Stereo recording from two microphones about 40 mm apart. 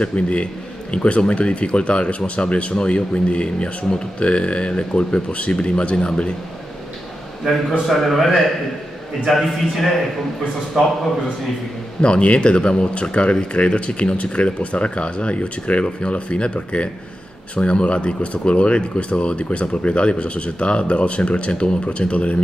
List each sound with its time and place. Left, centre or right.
0.0 s speech: left
7.9 s a man's voice: centre
10.8 s a man's voice: centre
12.0 s speech: left